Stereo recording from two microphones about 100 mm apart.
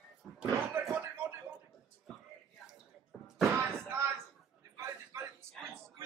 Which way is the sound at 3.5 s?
25° right (ahead or behind).